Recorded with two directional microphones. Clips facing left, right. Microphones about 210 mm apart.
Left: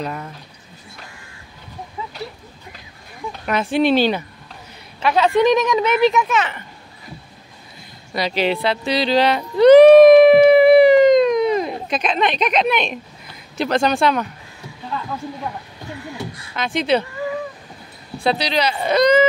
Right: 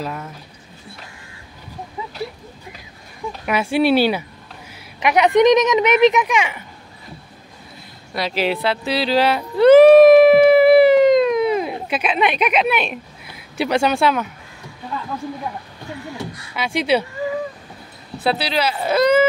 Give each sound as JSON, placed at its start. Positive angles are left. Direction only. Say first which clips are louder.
{"t": 0.0, "sound": "speech", "louder": "left 1 dB", "side_deg": -5}
{"t": 3.3, "sound": "speech", "louder": "even", "side_deg": -10}
{"t": 8.1, "sound": "speech", "louder": "left 1 dB", "side_deg": 0}
{"t": 16.5, "sound": "speech", "louder": "even", "side_deg": -10}
{"t": 18.1, "sound": "speech", "louder": "left 1 dB", "side_deg": -5}